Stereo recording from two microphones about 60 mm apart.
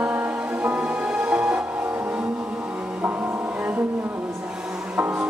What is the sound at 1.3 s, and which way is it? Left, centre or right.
Music, right.